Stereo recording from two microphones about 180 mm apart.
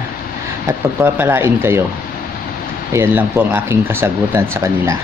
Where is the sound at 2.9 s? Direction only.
15° right (ahead or behind).